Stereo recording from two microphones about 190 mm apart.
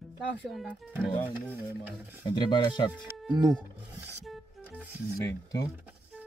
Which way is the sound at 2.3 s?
25° left (ahead or behind).